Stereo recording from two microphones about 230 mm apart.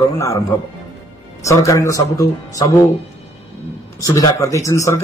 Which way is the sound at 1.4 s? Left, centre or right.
Centre.